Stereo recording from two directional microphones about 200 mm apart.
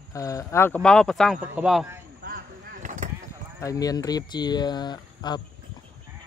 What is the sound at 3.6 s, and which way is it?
Speech, 15° left (ahead or behind).